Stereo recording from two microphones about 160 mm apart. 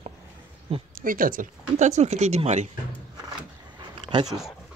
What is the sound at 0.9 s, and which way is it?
Speech, 60° right (ahead or behind).